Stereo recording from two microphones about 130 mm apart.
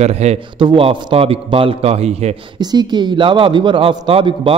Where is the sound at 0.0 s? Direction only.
55° right (ahead or behind).